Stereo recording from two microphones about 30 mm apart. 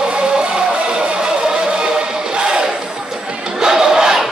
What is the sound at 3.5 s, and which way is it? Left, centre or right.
Crowd, centre.